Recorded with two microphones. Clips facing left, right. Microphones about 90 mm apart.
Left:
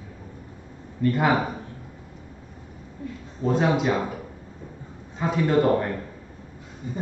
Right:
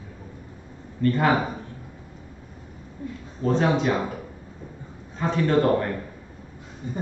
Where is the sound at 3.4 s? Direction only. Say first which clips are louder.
Even; 10° left (ahead or behind).